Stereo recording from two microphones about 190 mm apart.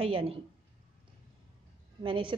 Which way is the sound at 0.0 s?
30° right (ahead or behind).